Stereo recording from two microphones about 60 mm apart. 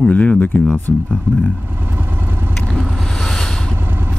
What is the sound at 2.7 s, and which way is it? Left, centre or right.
Vehicle, centre.